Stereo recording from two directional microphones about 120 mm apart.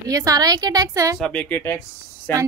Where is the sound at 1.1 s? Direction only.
5° left (ahead or behind).